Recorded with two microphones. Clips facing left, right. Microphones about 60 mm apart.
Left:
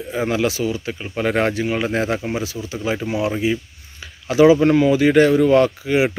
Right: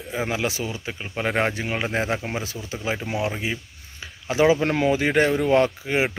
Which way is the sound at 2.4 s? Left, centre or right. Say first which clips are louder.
Left 6 dB; right.